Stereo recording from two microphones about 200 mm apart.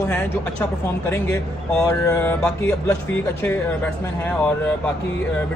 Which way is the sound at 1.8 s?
15° left (ahead or behind).